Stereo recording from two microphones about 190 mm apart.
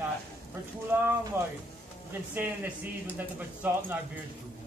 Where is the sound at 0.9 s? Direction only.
10° right (ahead or behind).